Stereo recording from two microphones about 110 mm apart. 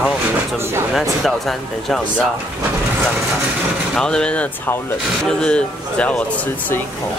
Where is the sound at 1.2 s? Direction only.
5° left (ahead or behind).